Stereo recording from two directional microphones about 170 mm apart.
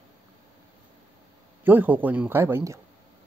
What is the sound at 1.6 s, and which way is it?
Speech, 10° right (ahead or behind).